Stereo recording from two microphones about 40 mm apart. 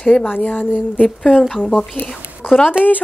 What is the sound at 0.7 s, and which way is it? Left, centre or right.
Speech, right.